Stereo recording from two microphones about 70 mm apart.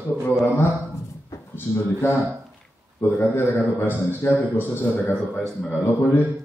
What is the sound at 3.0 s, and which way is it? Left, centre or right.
A man's voice, left.